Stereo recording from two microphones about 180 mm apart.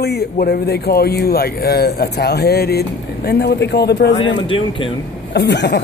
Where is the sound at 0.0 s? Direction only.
65° left (ahead or behind).